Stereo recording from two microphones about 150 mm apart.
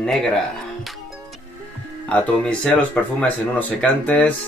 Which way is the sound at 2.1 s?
10° left (ahead or behind).